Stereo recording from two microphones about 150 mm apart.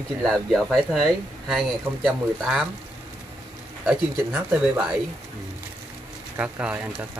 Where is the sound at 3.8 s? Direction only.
10° right (ahead or behind).